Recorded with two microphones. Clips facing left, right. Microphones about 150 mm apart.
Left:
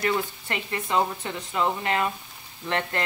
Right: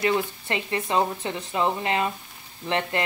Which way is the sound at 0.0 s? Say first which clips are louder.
Right 2 dB; 25° right (ahead or behind).